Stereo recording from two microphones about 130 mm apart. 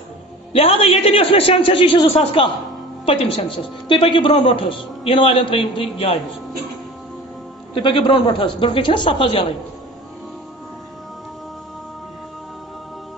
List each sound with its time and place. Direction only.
0.5 s a man's voice: 45° left (ahead or behind)
7.7 s a man's voice: 40° left (ahead or behind)